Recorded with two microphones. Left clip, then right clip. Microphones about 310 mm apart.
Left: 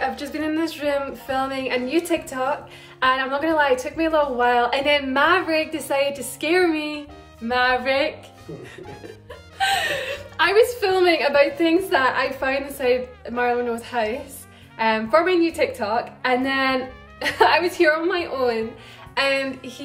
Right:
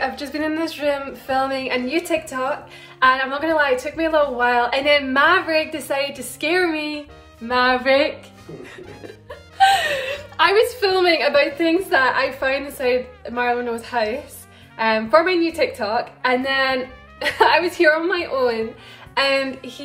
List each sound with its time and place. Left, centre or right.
0.0 s a woman's voice: centre
9.3 s a woman's voice: centre